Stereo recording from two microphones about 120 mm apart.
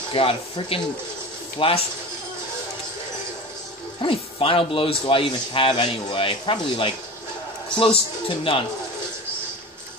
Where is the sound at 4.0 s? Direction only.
50° left (ahead or behind).